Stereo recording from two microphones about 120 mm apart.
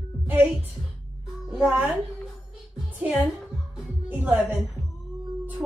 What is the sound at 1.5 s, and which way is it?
Speech, 10° right (ahead or behind).